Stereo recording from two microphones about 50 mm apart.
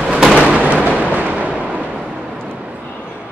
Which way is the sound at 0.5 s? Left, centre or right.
Right.